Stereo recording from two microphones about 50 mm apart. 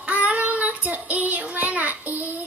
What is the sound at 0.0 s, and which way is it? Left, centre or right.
Child singing, right.